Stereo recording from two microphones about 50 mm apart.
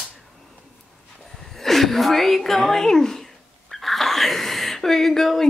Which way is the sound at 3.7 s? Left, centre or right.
Centre.